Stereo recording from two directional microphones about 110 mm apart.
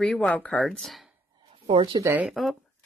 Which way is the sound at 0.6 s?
Centre (ahead or behind).